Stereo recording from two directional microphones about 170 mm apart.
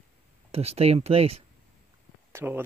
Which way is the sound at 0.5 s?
35° right (ahead or behind).